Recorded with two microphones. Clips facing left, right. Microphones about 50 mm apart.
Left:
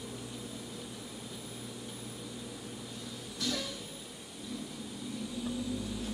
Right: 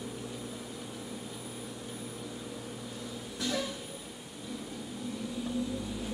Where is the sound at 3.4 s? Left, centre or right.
Centre.